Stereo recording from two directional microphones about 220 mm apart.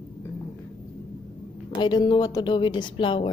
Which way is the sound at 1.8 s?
20° left (ahead or behind).